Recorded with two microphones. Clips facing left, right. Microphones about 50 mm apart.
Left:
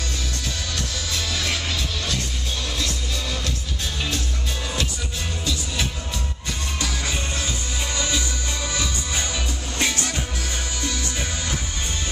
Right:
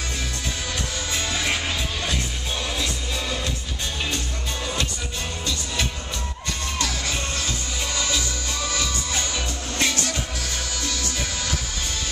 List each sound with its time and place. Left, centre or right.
1.1 s music: centre
5.4 s music: centre
6.8 s music: centre
10.8 s music: left